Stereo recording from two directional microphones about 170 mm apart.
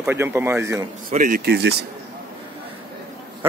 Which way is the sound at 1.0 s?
55° right (ahead or behind).